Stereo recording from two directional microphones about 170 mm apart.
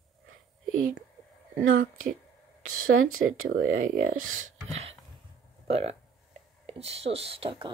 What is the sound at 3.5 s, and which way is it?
Speech, 55° right (ahead or behind).